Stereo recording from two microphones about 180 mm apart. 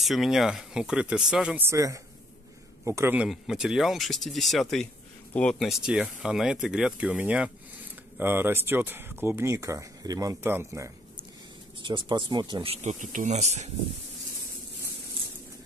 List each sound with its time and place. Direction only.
0.0 s speech: centre (ahead or behind)
3.3 s speech: centre (ahead or behind)
11.8 s speech: 25° right (ahead or behind)
12.8 s speech: 45° right (ahead or behind)